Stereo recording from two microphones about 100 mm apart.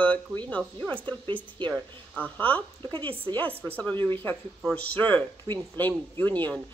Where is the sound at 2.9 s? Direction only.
60° right (ahead or behind).